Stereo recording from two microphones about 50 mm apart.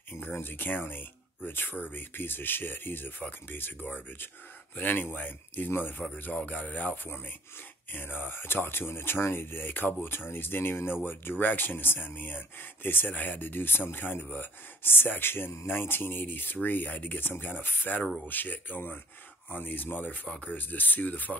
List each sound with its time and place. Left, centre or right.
0.1 s speech: left
6.3 s speech: left
7.1 s speech: left